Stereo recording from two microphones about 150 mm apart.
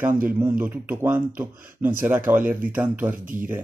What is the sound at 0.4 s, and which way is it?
Speech, 15° right (ahead or behind).